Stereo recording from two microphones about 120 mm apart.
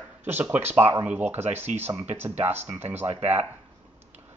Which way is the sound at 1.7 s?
75° right (ahead or behind).